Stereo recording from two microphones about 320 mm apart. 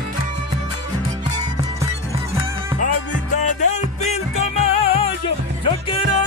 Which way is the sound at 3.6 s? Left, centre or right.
Left.